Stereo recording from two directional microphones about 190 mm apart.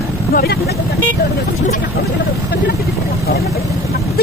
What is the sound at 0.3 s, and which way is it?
Speech, 50° left (ahead or behind).